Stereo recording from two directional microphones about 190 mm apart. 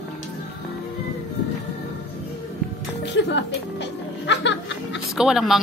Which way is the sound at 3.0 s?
70° left (ahead or behind).